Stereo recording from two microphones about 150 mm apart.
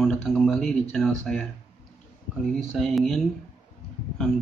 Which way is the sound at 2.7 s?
Centre (ahead or behind).